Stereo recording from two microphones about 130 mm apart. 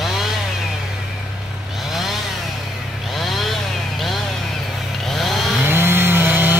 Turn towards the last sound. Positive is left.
turn(degrees=-15)  # may be behind; listen again after turning